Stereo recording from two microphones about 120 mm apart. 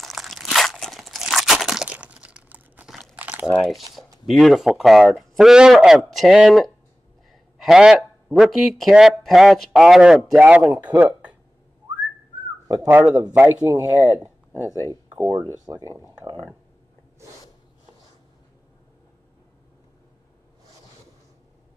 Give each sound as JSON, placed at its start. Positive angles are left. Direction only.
{"t": 0.0, "sound": "crunch", "side_deg": 0}
{"t": 3.2, "sound": "crumpling", "side_deg": -10}
{"t": 4.3, "sound": "speech", "side_deg": 0}
{"t": 12.6, "sound": "speech", "side_deg": -15}